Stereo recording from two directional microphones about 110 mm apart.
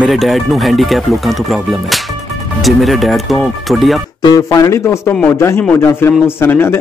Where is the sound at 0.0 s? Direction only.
Centre (ahead or behind).